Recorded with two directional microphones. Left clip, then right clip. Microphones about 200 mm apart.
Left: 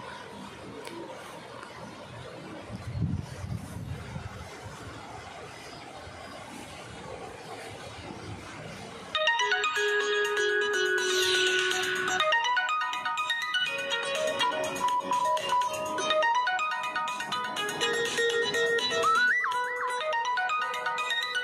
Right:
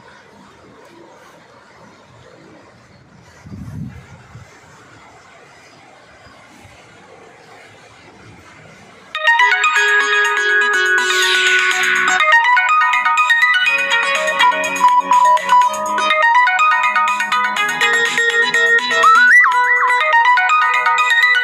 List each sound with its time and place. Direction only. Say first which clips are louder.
9.1 s music: right 13 dB; 45° right (ahead or behind)